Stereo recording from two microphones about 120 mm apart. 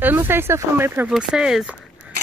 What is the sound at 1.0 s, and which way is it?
Speech, 5° right (ahead or behind).